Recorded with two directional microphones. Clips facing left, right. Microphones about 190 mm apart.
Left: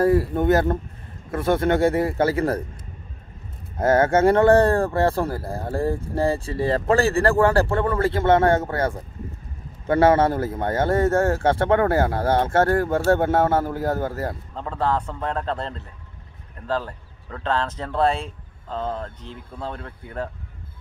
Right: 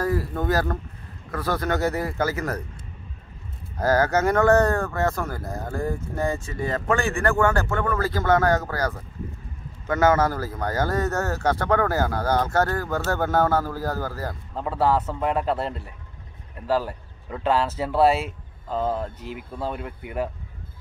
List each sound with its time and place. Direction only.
0.0 s a man's voice: 25° left (ahead or behind)
3.7 s a man's voice: 25° left (ahead or behind)
14.5 s speech: 10° right (ahead or behind)